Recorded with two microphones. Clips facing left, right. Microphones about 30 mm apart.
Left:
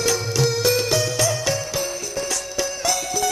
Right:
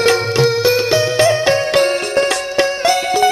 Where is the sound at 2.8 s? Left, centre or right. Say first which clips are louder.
Right 8 dB; right.